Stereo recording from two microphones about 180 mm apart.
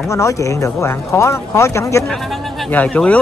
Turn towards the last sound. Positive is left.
turn(degrees=10)  # may be behind; listen again after turning